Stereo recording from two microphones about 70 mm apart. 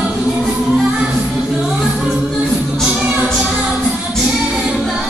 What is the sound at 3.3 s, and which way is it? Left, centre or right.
Music, centre.